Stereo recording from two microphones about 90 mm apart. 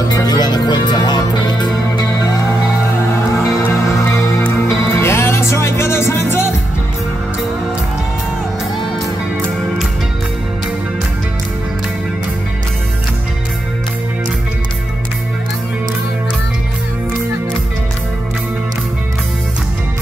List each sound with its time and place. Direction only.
0.1 s music: 45° left (ahead or behind)
4.6 s music: 30° left (ahead or behind)